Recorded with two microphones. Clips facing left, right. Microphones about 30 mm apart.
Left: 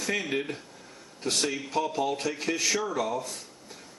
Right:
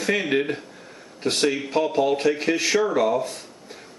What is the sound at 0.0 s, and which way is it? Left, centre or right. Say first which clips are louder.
Speech: right 7 dB; right.